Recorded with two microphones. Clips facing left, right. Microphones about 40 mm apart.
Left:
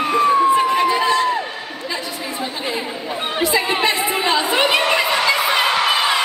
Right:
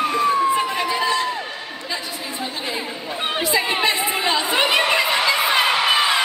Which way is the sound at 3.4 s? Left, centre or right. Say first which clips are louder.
Left 3 dB; centre.